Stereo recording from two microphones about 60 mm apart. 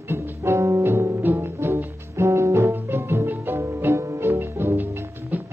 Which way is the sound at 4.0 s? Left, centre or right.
Right.